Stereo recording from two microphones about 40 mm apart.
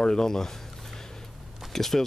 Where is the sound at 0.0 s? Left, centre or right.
Centre.